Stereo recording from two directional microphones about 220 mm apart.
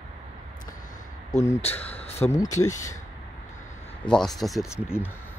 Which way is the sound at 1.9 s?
30° left (ahead or behind).